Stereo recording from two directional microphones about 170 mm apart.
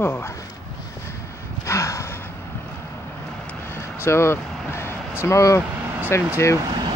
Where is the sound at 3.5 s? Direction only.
15° left (ahead or behind).